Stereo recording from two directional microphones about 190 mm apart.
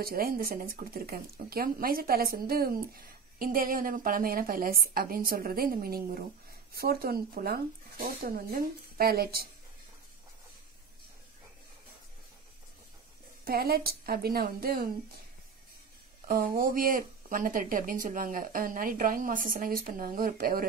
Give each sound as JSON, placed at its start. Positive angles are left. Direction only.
{"t": 0.0, "sound": "speech", "side_deg": -50}
{"t": 13.5, "sound": "speech", "side_deg": -55}
{"t": 16.3, "sound": "speech", "side_deg": -50}